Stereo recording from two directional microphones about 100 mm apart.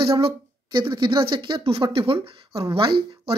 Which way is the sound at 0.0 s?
65° right (ahead or behind).